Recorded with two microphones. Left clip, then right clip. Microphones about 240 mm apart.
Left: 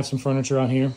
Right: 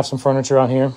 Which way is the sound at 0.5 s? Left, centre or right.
Right.